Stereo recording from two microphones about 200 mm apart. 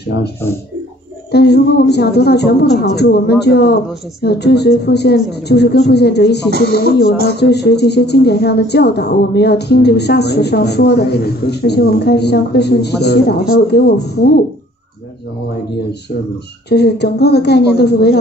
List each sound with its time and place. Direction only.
0.1 s speech: 55° left (ahead or behind)
1.3 s a woman's voice: 55° left (ahead or behind)
6.5 s speech: 55° right (ahead or behind)
7.2 s a woman's voice: 55° left (ahead or behind)
16.6 s a woman's voice: 55° left (ahead or behind)